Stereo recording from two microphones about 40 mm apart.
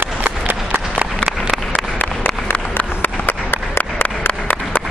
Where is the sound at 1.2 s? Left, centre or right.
Left.